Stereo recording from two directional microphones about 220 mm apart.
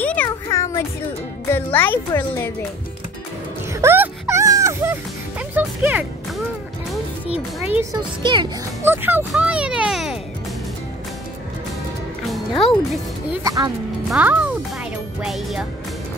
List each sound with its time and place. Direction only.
0.0 s a sound: 5° left (ahead or behind)
1.5 s speech: 10° left (ahead or behind)
3.7 s music: 10° right (ahead or behind)
5.5 s speech: 10° right (ahead or behind)
7.6 s speech: 10° right (ahead or behind)
8.2 s a child's voice: 20° right (ahead or behind)
8.8 s speech: 10° right (ahead or behind)
12.3 s music: centre (ahead or behind)
13.4 s speech: 15° right (ahead or behind)